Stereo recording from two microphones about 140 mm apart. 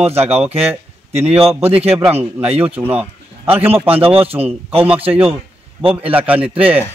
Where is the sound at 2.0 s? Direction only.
15° right (ahead or behind).